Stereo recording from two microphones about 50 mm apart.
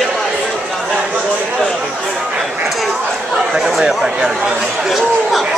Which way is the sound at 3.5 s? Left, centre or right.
Centre.